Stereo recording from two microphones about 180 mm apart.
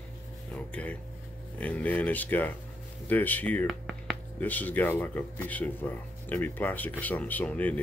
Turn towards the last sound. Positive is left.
turn(degrees=10)  # may be behind; listen again after turning